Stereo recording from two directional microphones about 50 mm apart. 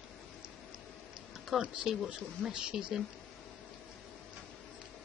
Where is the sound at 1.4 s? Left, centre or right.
Centre.